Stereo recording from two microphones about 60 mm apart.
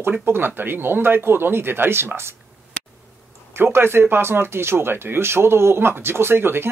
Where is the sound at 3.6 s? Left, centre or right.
Right.